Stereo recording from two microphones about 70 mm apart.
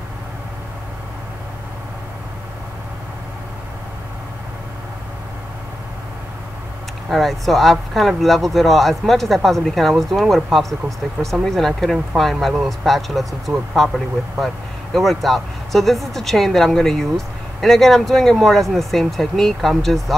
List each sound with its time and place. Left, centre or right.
7.1 s speech: centre